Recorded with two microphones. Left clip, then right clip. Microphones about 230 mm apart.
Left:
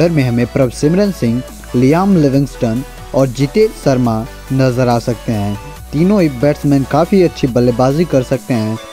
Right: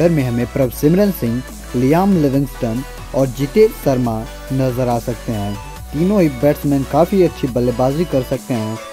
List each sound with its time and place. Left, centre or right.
0.0 s speech: centre